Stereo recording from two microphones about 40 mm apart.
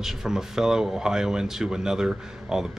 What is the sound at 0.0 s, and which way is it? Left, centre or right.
Speech, centre.